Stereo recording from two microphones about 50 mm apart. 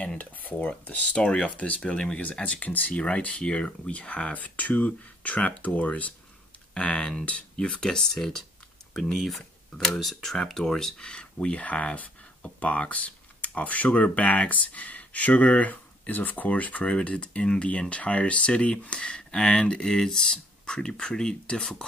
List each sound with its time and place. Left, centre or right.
0.2 s speech: left
0.9 s speech: left; by 11.0 s centre
11.0 s speech: centre